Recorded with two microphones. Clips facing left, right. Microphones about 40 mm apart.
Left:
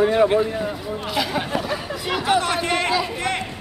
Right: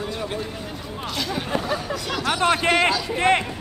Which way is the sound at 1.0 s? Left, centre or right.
Centre.